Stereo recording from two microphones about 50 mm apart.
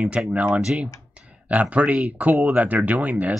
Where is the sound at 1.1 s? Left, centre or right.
Right.